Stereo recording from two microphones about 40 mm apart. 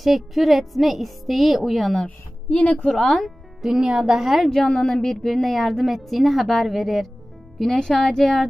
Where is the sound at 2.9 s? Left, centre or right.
Centre.